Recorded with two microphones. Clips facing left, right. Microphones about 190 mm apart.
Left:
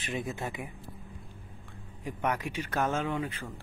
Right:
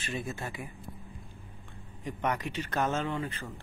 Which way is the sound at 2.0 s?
10° left (ahead or behind).